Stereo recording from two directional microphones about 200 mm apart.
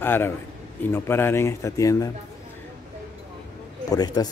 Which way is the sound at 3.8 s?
20° left (ahead or behind).